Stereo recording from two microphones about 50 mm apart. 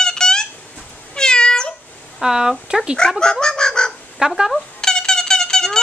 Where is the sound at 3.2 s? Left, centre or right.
Centre.